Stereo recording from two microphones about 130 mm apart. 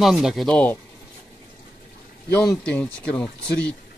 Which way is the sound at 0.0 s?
5° right (ahead or behind).